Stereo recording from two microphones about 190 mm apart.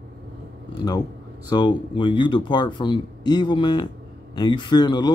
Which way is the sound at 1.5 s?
25° left (ahead or behind).